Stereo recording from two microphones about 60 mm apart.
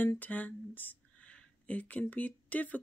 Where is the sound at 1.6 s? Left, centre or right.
Left.